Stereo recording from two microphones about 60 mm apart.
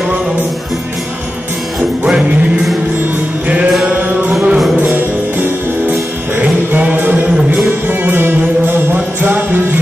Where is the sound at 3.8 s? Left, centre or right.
Right.